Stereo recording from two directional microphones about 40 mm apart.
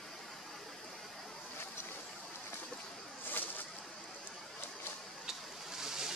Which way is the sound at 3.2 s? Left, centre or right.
Left.